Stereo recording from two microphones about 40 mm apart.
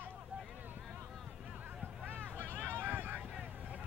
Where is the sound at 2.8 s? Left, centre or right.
Right.